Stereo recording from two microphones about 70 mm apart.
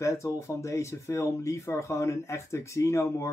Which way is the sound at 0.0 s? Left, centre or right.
Left.